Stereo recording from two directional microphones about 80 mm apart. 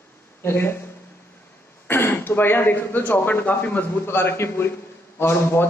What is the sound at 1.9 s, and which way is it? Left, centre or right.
A man's voice, left.